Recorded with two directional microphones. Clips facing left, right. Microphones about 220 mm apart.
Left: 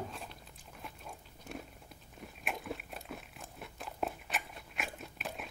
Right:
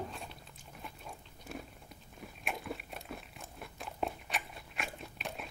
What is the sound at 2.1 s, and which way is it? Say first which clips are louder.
Biting: even; centre (ahead or behind).